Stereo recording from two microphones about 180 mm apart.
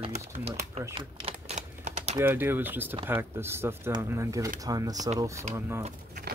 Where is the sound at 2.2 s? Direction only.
10° right (ahead or behind).